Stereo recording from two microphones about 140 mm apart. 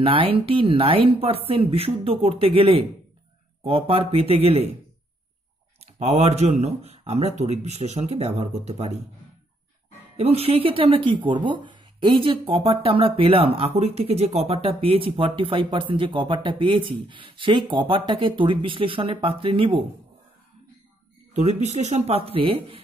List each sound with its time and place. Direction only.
0.0 s speech: 40° right (ahead or behind)
5.8 s speech: 50° right (ahead or behind)
10.1 s speech: 45° right (ahead or behind)
21.4 s speech: 50° right (ahead or behind)